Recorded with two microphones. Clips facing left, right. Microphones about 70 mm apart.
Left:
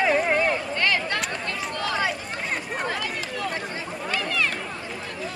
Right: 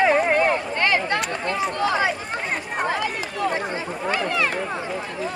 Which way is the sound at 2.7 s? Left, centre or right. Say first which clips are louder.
Right 4 dB; centre.